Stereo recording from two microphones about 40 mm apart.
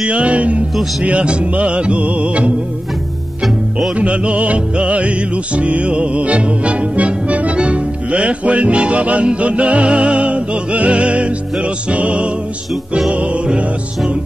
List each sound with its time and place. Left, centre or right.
0.0 s music: right
3.9 s music: right